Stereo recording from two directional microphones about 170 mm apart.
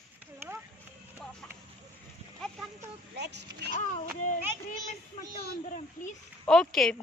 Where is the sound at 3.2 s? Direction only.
85° right.